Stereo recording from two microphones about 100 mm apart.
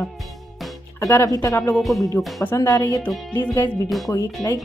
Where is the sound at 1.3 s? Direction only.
30° left (ahead or behind).